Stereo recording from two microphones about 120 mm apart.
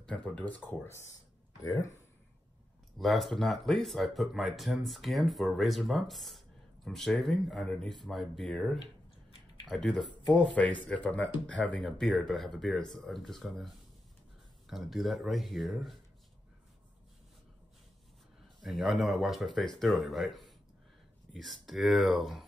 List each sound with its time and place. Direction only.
0.0 s speech: 10° left (ahead or behind); by 2.0 s 25° left (ahead or behind)
3.0 s speech: centre (ahead or behind)
14.7 s speech: centre (ahead or behind)
18.6 s speech: centre (ahead or behind)